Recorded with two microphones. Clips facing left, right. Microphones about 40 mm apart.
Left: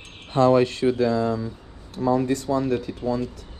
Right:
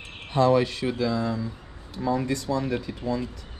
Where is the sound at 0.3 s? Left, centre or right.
Left.